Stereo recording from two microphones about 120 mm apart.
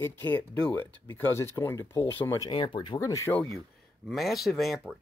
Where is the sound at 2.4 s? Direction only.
40° left (ahead or behind).